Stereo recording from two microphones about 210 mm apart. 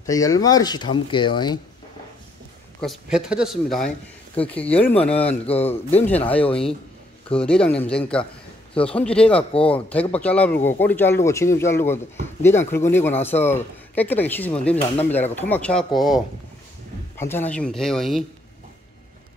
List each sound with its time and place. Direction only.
0.0 s speech: 15° left (ahead or behind)
2.8 s speech: centre (ahead or behind)
5.5 s speech: 30° left (ahead or behind)
7.3 s speech: 5° left (ahead or behind)
17.2 s speech: 10° left (ahead or behind)